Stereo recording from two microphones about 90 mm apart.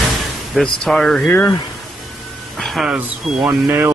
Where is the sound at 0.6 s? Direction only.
5° left (ahead or behind).